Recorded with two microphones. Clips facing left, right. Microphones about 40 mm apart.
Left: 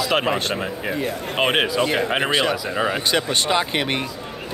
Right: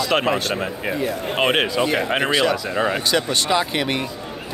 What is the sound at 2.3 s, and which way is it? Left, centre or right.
A man's voice, left.